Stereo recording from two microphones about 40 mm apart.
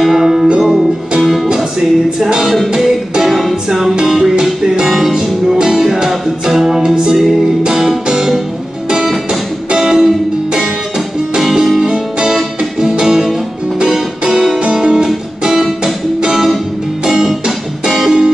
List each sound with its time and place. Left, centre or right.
0.0 s music: centre
2.1 s music: centre
9.8 s music: centre
11.8 s music: centre
13.0 s music: centre